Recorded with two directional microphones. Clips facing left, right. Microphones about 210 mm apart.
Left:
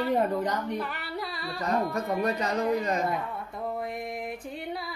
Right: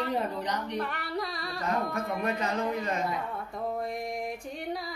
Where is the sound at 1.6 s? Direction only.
35° left (ahead or behind).